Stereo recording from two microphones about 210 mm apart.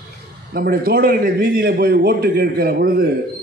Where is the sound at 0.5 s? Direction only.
45° right (ahead or behind).